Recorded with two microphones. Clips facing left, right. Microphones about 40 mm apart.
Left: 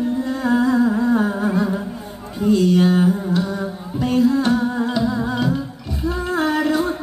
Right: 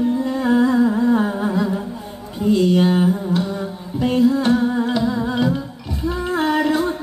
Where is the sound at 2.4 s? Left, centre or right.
Right.